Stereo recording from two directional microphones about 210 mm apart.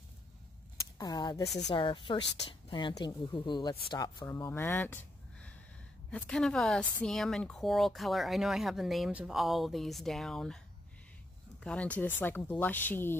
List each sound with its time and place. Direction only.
0.7 s speech: 20° left (ahead or behind); by 10.6 s centre (ahead or behind)
11.6 s speech: 5° left (ahead or behind)